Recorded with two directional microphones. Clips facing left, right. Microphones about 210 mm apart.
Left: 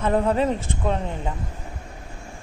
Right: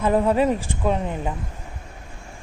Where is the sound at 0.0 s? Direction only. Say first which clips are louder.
Right 2 dB; 10° right (ahead or behind).